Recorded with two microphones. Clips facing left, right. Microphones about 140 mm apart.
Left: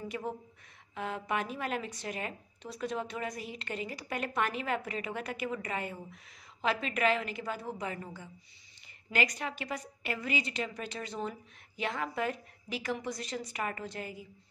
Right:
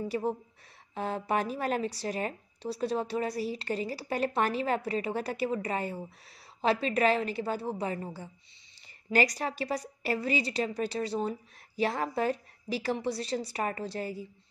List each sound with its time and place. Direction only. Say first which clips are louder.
0.1 s a woman's voice: right 7 dB; 30° right (ahead or behind)